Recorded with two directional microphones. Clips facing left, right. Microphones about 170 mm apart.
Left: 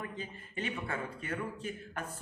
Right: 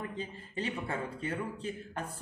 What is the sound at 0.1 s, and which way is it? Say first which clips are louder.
Speech: right 3 dB; 30° right (ahead or behind).